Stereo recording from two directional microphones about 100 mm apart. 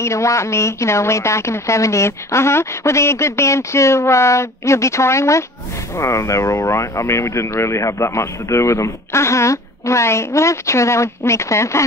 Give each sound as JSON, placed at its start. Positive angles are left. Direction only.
{"t": 0.0, "sound": "speech", "side_deg": 30}